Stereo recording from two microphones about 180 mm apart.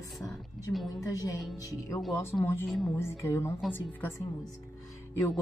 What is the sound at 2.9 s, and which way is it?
Speech, 15° left (ahead or behind).